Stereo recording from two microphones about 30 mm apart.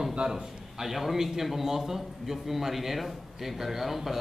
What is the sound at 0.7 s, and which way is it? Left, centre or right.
A man's voice, centre.